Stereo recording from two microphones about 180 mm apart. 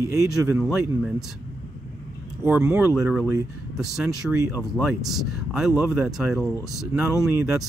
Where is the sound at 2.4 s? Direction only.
10° right (ahead or behind).